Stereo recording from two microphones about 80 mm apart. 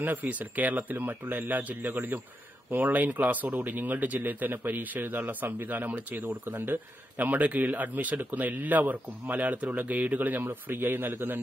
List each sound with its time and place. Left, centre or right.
0.0 s speech: right